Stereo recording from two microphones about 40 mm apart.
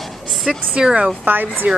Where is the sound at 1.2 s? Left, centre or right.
Right.